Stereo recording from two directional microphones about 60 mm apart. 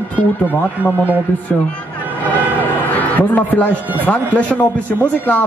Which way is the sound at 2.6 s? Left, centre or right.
Left.